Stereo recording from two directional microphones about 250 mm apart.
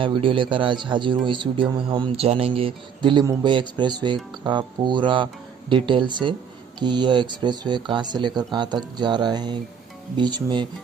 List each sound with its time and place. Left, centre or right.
0.0 s a man's voice: right